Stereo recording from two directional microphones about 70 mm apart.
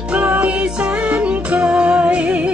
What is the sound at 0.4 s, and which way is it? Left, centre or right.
Music, centre.